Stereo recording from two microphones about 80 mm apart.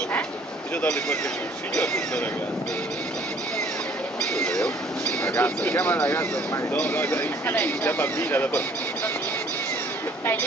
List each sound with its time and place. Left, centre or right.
4.4 s speech: centre
5.2 s speech: left